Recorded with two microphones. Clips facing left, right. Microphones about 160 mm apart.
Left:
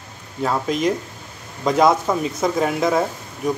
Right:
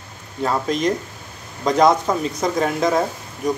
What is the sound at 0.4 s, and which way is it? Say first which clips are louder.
Speech: even; 5° left (ahead or behind).